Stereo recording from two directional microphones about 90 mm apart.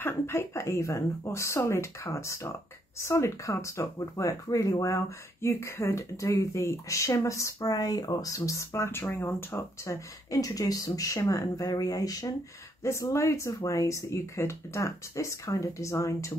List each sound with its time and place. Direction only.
0.0 s speech: 25° left (ahead or behind)